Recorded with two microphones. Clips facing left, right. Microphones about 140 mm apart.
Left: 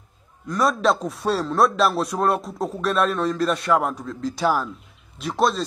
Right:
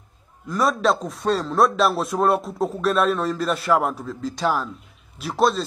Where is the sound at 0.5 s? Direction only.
Centre (ahead or behind).